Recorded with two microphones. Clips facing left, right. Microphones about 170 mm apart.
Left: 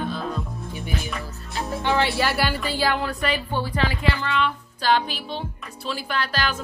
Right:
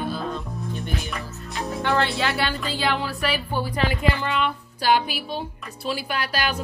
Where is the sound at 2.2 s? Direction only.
5° left (ahead or behind).